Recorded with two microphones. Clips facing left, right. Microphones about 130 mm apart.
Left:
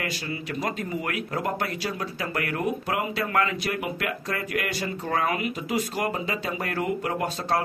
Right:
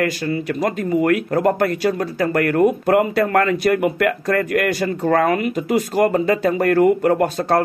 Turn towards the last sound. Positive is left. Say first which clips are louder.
# right 10 dB
turn(degrees=-50)  # may be behind; listen again after turning